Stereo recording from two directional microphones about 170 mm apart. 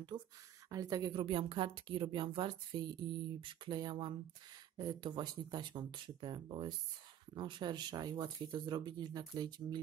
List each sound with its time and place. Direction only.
0.1 s a woman's voice: 25° right (ahead or behind)